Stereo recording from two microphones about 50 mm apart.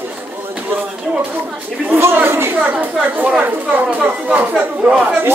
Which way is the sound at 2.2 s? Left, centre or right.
Right.